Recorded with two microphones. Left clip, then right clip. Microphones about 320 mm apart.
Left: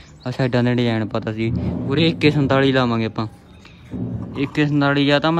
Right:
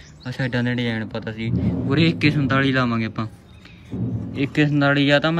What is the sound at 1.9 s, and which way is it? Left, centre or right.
Speech, centre.